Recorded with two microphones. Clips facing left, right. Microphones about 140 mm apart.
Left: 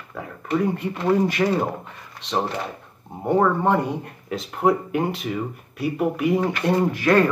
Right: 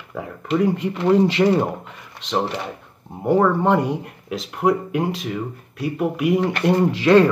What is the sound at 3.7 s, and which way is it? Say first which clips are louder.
Speech: right 3 dB; 85° right.